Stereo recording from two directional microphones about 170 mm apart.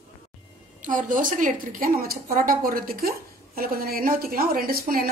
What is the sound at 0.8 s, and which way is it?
A woman's voice, 50° right (ahead or behind).